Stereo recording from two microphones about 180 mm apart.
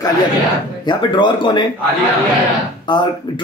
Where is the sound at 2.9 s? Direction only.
25° left (ahead or behind).